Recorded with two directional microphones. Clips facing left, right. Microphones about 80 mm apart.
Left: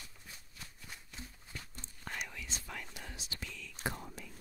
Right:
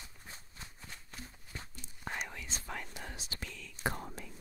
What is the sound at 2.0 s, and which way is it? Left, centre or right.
Whispering, right.